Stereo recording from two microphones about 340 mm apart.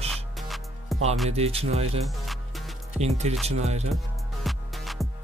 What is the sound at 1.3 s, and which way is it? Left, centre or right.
Speech, centre.